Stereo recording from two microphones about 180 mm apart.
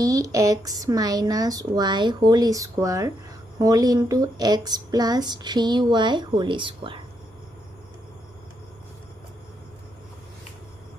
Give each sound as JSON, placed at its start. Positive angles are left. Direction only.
{"t": 0.0, "sound": "speech", "side_deg": -20}